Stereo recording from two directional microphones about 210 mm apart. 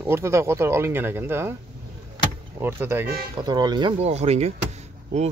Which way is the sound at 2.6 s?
10° right (ahead or behind).